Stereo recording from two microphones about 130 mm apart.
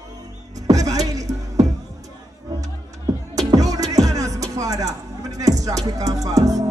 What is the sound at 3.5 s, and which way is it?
Music, 30° right (ahead or behind).